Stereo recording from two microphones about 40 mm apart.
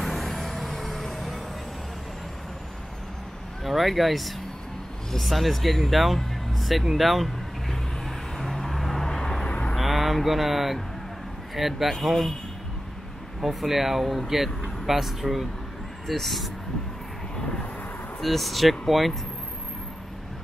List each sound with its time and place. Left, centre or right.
0.0 s vehicle: centre
3.6 s speech: centre
8.4 s vehicle: centre
9.5 s vehicle: left
9.8 s vehicle: centre
11.5 s speech: centre
13.4 s speech: centre
18.2 s speech: centre